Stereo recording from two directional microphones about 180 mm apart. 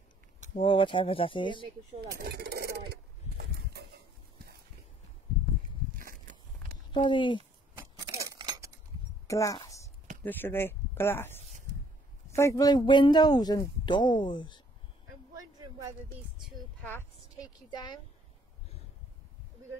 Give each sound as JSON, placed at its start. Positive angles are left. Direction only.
{"t": 0.6, "sound": "speech", "side_deg": 30}
{"t": 2.1, "sound": "a sound", "side_deg": -60}
{"t": 6.9, "sound": "speech", "side_deg": 25}
{"t": 7.7, "sound": "scissors", "side_deg": -15}
{"t": 9.3, "sound": "a woman's voice", "side_deg": 20}
{"t": 15.3, "sound": "a sound", "side_deg": -20}
{"t": 16.5, "sound": "speech", "side_deg": 10}
{"t": 17.4, "sound": "a woman's voice", "side_deg": 25}